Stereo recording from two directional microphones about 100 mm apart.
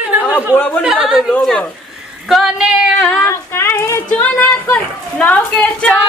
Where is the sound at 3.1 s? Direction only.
30° left (ahead or behind).